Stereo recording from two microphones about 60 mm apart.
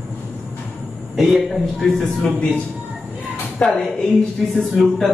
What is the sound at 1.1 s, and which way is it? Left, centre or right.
Speech, centre.